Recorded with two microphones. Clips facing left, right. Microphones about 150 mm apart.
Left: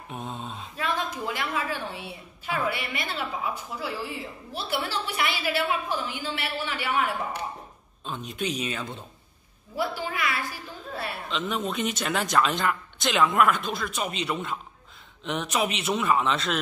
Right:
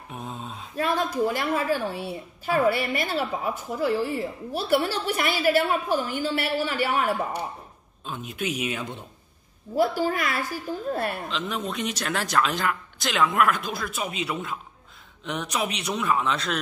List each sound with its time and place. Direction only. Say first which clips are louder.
0.1 s speech: even; centre (ahead or behind)
0.7 s a woman's voice: right 6 dB; 45° right (ahead or behind)
8.0 s speech: even; 5° right (ahead or behind)
9.8 s a woman's voice: right 6 dB; 45° right (ahead or behind)
11.2 s speech: left 1 dB; centre (ahead or behind)